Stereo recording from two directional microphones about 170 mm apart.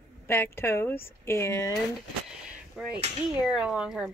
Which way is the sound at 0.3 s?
15° left (ahead or behind).